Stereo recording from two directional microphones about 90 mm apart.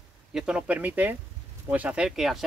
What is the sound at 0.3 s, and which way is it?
Speech, 10° right (ahead or behind).